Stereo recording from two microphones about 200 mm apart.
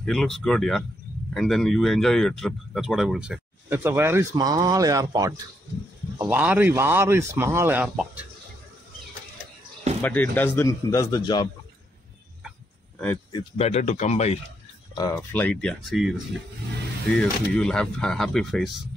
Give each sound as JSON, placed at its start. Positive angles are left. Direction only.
{"t": 0.0, "sound": "a man's voice", "side_deg": 0}
{"t": 10.0, "sound": "speech", "side_deg": 10}
{"t": 13.3, "sound": "speech", "side_deg": 25}
{"t": 15.0, "sound": "speech", "side_deg": 20}
{"t": 15.3, "sound": "a man's voice", "side_deg": 5}
{"t": 17.2, "sound": "a man's voice", "side_deg": 5}